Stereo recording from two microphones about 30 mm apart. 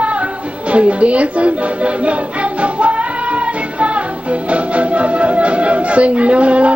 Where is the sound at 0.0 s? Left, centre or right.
Right.